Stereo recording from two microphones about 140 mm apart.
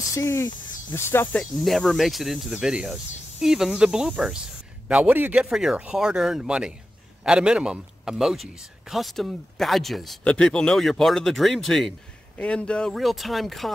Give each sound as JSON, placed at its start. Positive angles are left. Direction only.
{"t": 0.1, "sound": "speech", "side_deg": 20}
{"t": 1.4, "sound": "speech", "side_deg": 0}